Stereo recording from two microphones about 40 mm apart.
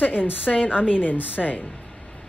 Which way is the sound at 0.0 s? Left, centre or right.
Left.